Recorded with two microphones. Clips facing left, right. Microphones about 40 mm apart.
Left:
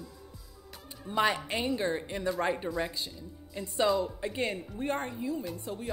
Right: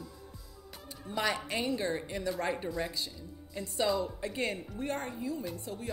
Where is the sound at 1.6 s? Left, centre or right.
Centre.